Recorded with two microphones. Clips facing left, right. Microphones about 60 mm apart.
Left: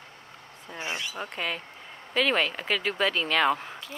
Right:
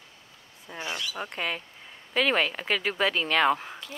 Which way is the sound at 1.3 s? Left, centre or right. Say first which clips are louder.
Even; centre.